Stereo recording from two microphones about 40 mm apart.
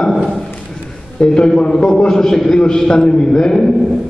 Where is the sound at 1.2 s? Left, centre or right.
Left.